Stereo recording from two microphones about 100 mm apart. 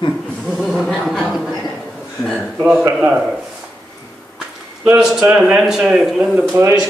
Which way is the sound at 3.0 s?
10° right (ahead or behind).